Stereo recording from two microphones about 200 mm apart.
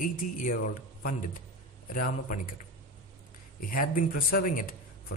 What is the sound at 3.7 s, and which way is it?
A man's voice, 45° left (ahead or behind).